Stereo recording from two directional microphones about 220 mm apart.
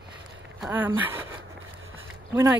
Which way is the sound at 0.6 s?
10° right (ahead or behind).